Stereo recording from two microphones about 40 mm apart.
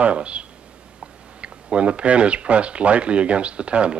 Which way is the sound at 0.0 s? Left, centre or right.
Right.